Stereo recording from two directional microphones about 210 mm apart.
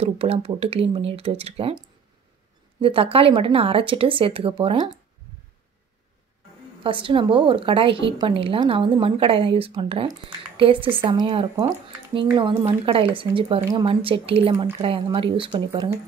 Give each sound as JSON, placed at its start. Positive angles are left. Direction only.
{"t": 0.0, "sound": "speech", "side_deg": -30}
{"t": 6.8, "sound": "speech", "side_deg": -25}